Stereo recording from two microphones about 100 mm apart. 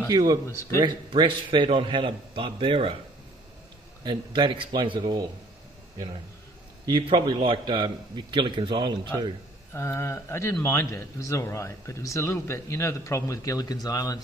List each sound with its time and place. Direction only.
0.1 s speech: 40° right (ahead or behind)
0.8 s a man's voice: 50° right (ahead or behind)
4.0 s a man's voice: 50° right (ahead or behind)
6.9 s a man's voice: 55° right (ahead or behind)
9.8 s a man's voice: 25° left (ahead or behind)